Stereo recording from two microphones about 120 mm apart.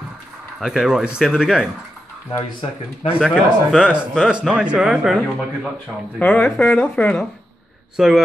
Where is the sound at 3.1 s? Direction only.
5° right (ahead or behind).